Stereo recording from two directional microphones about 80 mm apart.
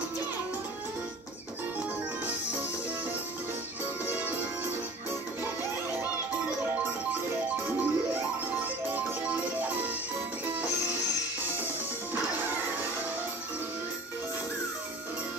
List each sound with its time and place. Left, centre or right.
4.0 s music: right
7.4 s music: centre